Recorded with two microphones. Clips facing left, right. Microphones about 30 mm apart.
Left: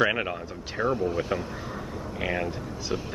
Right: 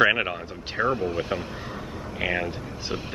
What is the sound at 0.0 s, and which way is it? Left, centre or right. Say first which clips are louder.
Speech: right 4 dB; right.